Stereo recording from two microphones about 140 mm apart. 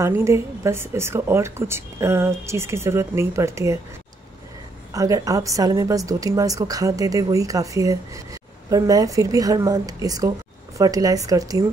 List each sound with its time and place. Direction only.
0.0 s a woman's voice: 20° right (ahead or behind)
4.9 s a woman's voice: 25° right (ahead or behind)